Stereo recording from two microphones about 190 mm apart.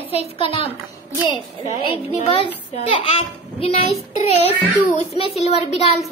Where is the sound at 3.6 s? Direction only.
35° left (ahead or behind).